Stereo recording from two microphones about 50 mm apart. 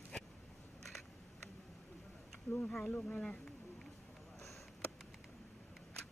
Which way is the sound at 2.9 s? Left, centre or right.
Centre.